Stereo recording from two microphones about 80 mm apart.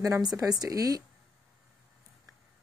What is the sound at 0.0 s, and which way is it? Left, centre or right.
Speech, right.